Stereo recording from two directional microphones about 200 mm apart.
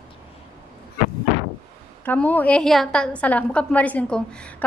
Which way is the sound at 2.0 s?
10° left (ahead or behind).